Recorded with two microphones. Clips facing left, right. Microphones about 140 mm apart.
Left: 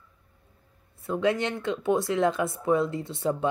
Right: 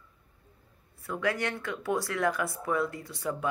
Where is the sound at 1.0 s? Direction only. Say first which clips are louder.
Left 5 dB; 20° left (ahead or behind).